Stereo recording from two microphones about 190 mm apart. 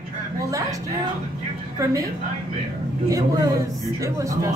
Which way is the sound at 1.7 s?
15° right (ahead or behind).